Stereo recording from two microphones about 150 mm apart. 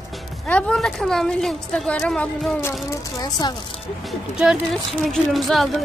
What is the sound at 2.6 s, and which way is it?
Speech, 20° left (ahead or behind).